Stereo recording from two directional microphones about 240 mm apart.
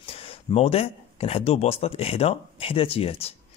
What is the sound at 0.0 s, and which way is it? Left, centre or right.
Speech, left.